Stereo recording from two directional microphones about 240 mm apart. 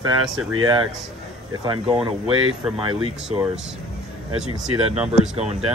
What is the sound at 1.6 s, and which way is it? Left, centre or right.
Speech, centre.